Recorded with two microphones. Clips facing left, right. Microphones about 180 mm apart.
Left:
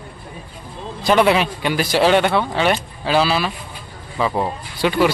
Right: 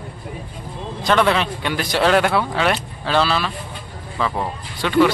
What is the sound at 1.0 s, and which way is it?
A man's voice, 10° left (ahead or behind).